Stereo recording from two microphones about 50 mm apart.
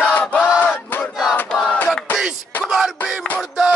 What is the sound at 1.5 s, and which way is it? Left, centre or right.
Crowd, centre.